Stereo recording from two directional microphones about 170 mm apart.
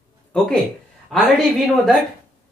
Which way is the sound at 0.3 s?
5° left (ahead or behind).